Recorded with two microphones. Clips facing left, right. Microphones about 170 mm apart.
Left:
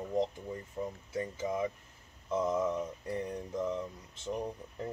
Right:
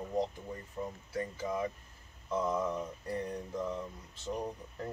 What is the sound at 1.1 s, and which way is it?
Mantra, 20° left (ahead or behind).